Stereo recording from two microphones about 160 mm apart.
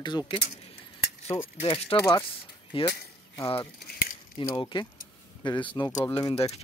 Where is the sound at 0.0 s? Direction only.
30° left (ahead or behind).